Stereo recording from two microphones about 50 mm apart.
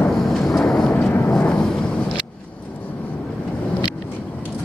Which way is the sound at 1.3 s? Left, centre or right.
Centre.